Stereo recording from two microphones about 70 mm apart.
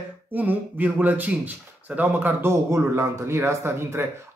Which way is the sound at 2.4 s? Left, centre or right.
Right.